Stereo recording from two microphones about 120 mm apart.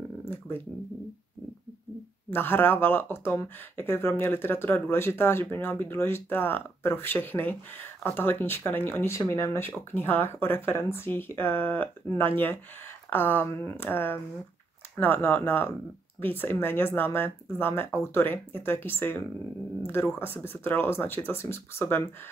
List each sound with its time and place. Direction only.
2.3 s speech: 15° left (ahead or behind)